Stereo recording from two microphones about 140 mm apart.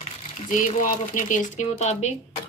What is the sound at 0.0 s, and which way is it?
Speech, 60° left (ahead or behind).